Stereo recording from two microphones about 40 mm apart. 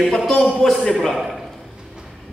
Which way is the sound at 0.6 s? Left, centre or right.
Centre.